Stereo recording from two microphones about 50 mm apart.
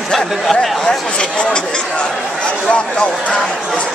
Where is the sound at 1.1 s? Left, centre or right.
Centre.